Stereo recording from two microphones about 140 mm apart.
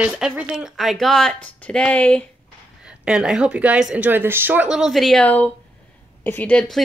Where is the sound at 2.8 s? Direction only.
5° right (ahead or behind).